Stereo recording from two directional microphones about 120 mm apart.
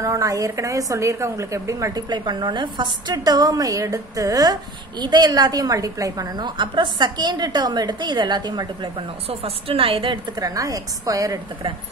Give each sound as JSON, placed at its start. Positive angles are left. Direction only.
{"t": 0.0, "sound": "a woman's voice", "side_deg": -25}
{"t": 9.3, "sound": "a woman's voice", "side_deg": -50}
{"t": 10.4, "sound": "a woman's voice", "side_deg": -30}